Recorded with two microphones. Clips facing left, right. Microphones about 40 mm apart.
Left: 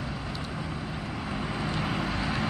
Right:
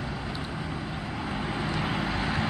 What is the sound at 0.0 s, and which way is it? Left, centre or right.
Vehicle, centre.